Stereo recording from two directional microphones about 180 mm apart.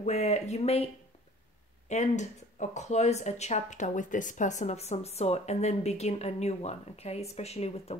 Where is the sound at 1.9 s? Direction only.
40° left (ahead or behind).